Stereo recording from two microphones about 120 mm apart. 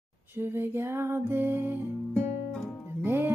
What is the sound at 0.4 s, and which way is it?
Music, 20° right (ahead or behind).